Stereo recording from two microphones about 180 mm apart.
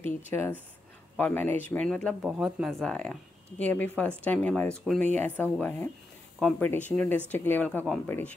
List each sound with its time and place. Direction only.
0.3 s a woman's voice: 10° left (ahead or behind)